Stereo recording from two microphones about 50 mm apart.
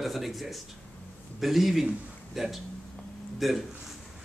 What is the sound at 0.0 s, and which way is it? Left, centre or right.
Speech, centre.